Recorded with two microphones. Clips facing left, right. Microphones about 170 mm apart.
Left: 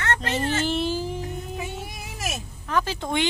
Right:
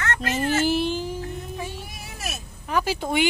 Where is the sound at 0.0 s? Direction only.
30° left (ahead or behind).